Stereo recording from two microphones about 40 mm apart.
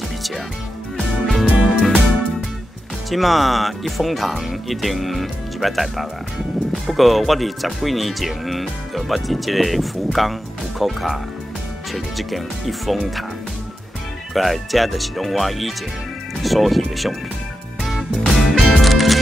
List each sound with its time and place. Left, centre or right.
0.9 s music: centre
1.4 s music: right
3.1 s speech: centre
14.3 s speech: centre
18.3 s music: centre